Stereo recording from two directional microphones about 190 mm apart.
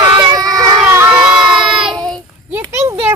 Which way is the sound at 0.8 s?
10° right (ahead or behind).